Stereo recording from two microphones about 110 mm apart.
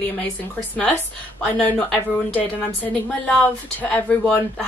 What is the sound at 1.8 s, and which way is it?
Speech, 15° left (ahead or behind).